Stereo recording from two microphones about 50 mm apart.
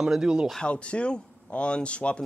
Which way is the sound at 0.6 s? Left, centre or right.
Left.